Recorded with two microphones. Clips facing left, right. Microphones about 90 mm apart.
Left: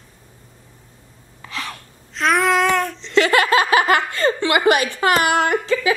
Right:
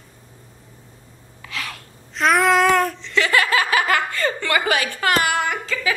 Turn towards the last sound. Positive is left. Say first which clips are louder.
# left 5 dB
turn(degrees=20)  # may be behind; listen again after turning